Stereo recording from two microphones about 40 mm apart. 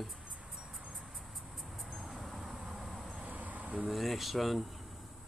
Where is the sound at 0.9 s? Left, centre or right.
Centre.